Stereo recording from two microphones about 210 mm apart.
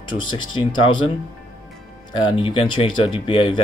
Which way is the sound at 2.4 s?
25° left (ahead or behind).